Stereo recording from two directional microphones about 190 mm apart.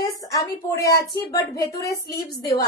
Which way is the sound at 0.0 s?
20° left (ahead or behind).